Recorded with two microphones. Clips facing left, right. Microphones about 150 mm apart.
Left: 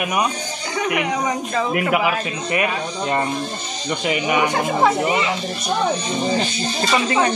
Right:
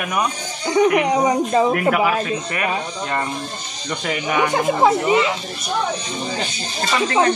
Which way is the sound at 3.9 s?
10° left (ahead or behind).